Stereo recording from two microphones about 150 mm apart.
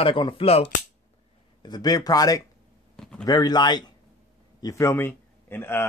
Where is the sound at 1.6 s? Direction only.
25° left (ahead or behind).